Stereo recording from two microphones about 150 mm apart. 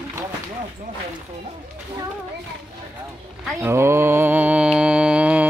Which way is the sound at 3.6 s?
15° right (ahead or behind).